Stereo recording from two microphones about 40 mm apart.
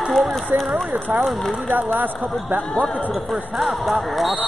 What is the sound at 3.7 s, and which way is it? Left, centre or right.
Speech, centre.